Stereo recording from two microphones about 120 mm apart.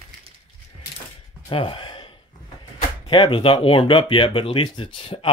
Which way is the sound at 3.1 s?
45° left (ahead or behind).